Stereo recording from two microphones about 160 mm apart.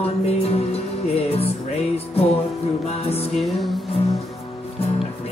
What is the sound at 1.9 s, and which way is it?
Music, 40° left (ahead or behind).